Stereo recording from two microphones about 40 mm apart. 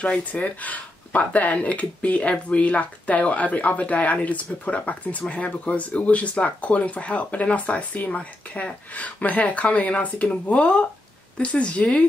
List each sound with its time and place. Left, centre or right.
0.2 s speech: left